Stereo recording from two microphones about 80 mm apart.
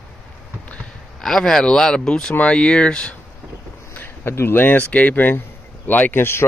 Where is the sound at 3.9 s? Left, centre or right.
Left.